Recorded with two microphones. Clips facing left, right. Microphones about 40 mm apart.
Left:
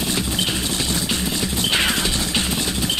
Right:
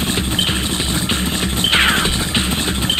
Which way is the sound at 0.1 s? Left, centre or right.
Right.